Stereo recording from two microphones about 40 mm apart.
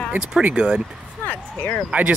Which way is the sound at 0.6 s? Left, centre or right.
Right.